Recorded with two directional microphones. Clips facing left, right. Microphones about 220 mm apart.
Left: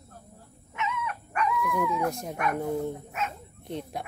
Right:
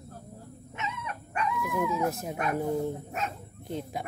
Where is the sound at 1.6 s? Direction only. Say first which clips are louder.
Left 1 dB; 5° right (ahead or behind).